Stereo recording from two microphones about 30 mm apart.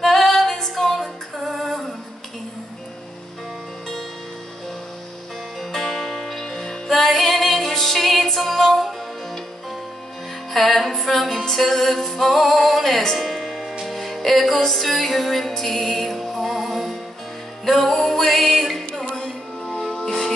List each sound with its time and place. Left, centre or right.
0.0 s female singing: centre
5.6 s music: centre
10.5 s music: centre
19.1 s music: left